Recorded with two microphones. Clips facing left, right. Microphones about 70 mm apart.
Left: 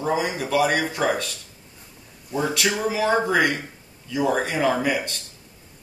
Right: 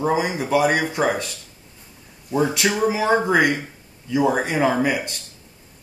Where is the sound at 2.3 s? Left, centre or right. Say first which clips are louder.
Right 3 dB; right.